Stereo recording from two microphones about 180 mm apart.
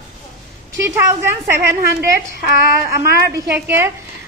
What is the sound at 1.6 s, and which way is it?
A woman's voice, 65° right (ahead or behind).